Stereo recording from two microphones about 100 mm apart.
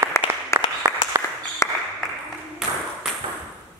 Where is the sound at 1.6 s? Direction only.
30° left (ahead or behind).